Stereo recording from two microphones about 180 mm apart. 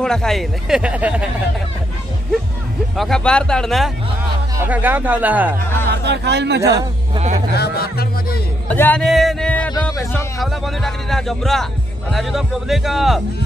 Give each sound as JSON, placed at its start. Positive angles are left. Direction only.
{"t": 0.0, "sound": "speech", "side_deg": 5}
{"t": 3.0, "sound": "speech", "side_deg": 5}
{"t": 4.6, "sound": "speech", "side_deg": -10}
{"t": 6.0, "sound": "speech", "side_deg": -70}
{"t": 6.6, "sound": "a man's voice", "side_deg": -20}
{"t": 7.5, "sound": "speech", "side_deg": 60}
{"t": 8.6, "sound": "speech", "side_deg": 10}
{"t": 9.7, "sound": "speech", "side_deg": 20}
{"t": 10.4, "sound": "speech", "side_deg": 0}